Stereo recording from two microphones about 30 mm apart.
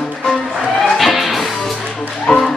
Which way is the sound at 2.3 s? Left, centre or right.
Left.